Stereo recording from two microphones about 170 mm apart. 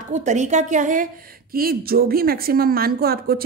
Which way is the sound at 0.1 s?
45° right (ahead or behind).